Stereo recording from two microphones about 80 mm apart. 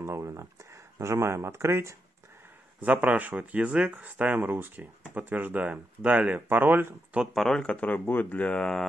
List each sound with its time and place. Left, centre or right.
0.0 s speech: right
2.8 s speech: centre
7.3 s speech: centre